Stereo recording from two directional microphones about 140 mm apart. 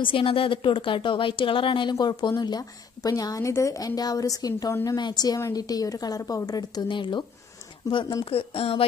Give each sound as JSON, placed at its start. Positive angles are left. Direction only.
{"t": 0.0, "sound": "a woman's voice", "side_deg": 40}